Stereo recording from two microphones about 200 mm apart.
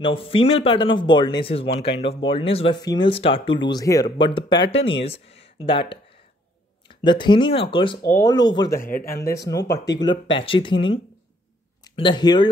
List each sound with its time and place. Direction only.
0.0 s speech: 25° left (ahead or behind)